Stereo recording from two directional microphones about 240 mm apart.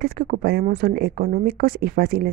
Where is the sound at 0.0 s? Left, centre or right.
Right.